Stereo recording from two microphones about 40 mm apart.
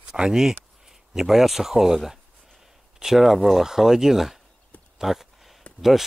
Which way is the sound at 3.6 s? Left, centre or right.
Centre.